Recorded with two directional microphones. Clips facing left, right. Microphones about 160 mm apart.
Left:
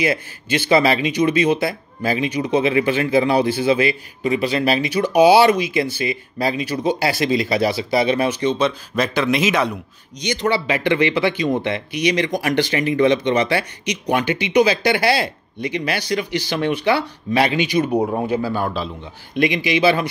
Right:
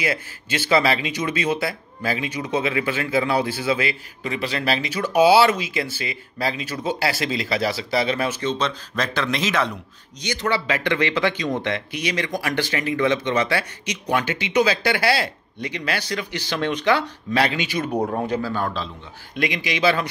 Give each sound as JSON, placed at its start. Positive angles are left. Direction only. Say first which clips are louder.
{"t": 0.0, "sound": "speech", "louder": "left 5 dB", "side_deg": 20}